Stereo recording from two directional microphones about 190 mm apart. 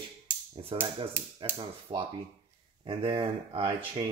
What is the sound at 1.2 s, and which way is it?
Speech, 10° right (ahead or behind).